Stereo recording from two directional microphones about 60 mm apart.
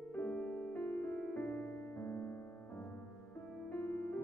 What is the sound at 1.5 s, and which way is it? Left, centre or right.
Music, left.